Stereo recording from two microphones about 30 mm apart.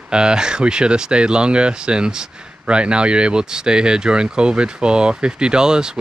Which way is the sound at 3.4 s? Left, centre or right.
Right.